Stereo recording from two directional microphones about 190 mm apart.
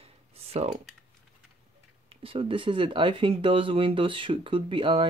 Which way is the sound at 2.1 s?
30° right (ahead or behind).